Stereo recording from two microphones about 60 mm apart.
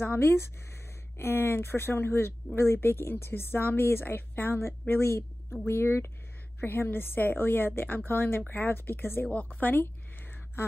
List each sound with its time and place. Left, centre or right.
0.0 s speech: left